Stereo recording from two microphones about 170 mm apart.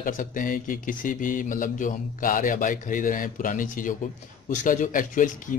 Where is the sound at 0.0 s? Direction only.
50° left (ahead or behind).